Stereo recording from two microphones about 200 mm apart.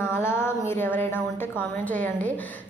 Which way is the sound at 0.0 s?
10° left (ahead or behind).